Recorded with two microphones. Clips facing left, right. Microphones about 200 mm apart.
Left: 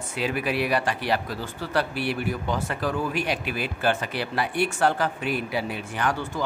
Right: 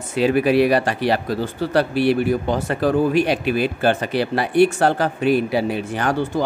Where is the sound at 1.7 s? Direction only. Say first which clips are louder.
Right 9 dB; 75° right (ahead or behind).